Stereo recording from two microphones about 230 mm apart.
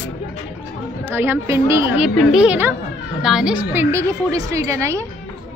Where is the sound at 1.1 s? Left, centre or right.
Centre.